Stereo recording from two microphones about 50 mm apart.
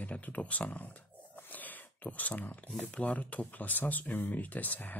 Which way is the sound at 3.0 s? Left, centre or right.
Left.